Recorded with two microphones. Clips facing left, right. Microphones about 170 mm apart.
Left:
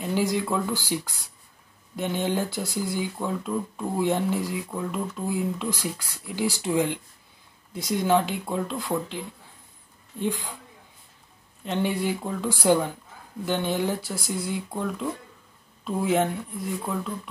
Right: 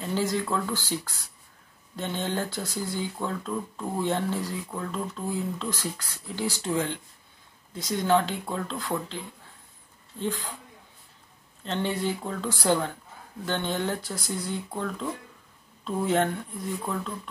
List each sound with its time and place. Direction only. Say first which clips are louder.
0.0 s speech: left 2 dB; 15° left (ahead or behind)
11.6 s speech: left 2 dB; 10° left (ahead or behind)